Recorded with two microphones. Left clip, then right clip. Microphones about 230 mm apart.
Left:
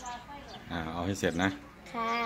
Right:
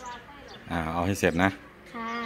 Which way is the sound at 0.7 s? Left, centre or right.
Right.